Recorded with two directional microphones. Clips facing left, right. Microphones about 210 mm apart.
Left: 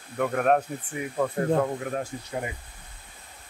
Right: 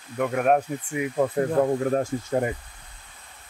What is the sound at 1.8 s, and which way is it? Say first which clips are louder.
Speech: right 7 dB; 40° right (ahead or behind).